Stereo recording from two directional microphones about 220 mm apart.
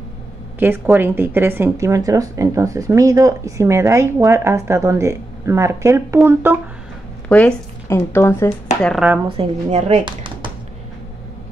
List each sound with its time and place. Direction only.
0.6 s speech: 10° right (ahead or behind)
7.2 s speech: 5° left (ahead or behind)
8.8 s speech: centre (ahead or behind)
9.4 s speech: 30° right (ahead or behind)